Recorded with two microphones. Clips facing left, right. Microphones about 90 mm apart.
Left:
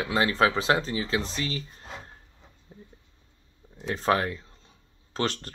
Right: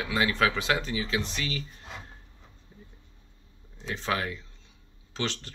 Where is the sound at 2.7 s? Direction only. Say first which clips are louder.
Left 4 dB; 40° left (ahead or behind).